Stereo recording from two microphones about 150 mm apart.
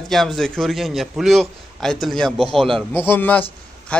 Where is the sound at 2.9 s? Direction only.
15° left (ahead or behind).